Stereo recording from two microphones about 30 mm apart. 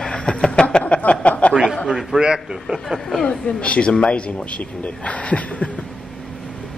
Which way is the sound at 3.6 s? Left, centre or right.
Left.